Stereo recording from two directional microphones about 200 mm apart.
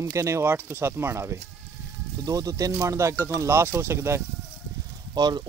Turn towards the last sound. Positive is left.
turn(degrees=-20)  # may be behind; listen again after turning